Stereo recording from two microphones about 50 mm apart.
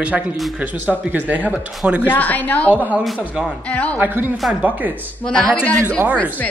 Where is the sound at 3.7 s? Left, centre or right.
Left.